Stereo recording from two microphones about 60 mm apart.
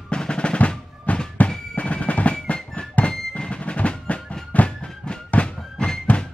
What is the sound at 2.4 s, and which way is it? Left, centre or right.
Music, left.